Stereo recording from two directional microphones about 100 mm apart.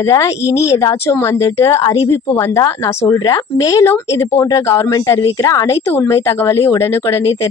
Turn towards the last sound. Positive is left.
turn(degrees=25)  # may be behind; listen again after turning